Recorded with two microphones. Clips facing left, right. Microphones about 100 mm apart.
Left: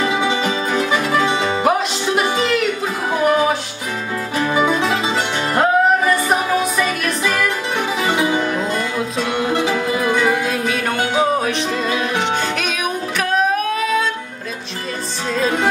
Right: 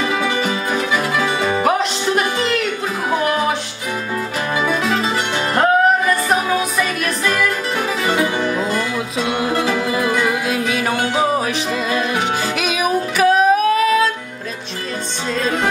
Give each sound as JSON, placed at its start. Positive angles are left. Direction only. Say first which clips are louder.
{"t": 0.2, "sound": "music", "louder": "left 1 dB", "side_deg": 20}
{"t": 1.6, "sound": "music", "louder": "even", "side_deg": 5}
{"t": 5.5, "sound": "music", "louder": "right 1 dB", "side_deg": 0}
{"t": 8.5, "sound": "music", "louder": "even", "side_deg": 0}
{"t": 15.3, "sound": "music", "louder": "left 2 dB", "side_deg": 5}